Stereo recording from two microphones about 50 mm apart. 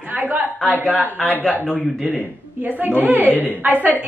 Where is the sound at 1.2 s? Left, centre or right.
Centre.